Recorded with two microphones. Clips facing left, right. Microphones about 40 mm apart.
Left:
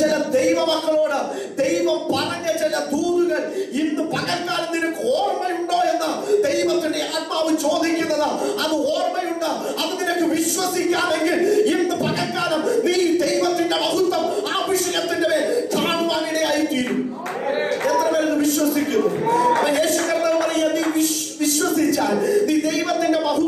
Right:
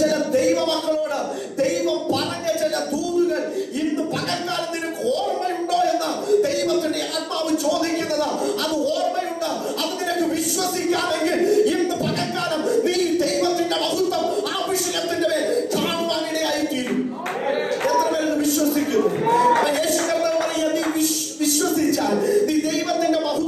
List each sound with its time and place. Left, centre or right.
0.4 s a man's voice: centre
4.7 s a sound: centre
7.6 s speech: centre
10.0 s speech: centre
17.8 s a sound: centre
19.6 s speech: centre